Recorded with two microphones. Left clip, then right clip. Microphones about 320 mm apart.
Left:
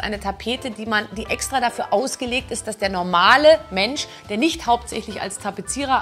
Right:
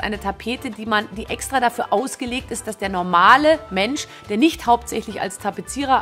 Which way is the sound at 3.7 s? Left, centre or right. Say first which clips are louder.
Even; right.